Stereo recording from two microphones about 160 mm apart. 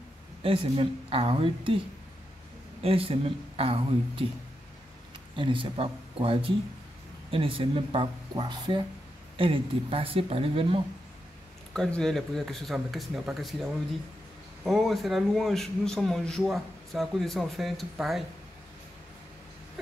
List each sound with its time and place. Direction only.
0.4 s speech: 35° right (ahead or behind)
2.8 s speech: 35° right (ahead or behind)
5.3 s speech: 30° right (ahead or behind)
11.7 s a man's voice: 5° left (ahead or behind)
14.6 s a man's voice: centre (ahead or behind)